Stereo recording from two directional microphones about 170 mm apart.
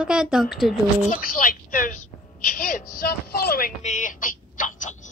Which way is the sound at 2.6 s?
55° left (ahead or behind).